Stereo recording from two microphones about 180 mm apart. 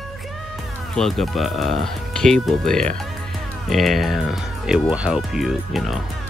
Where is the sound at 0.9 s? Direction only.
Centre (ahead or behind).